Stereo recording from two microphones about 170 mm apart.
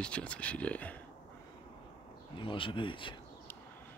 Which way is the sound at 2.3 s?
30° left (ahead or behind).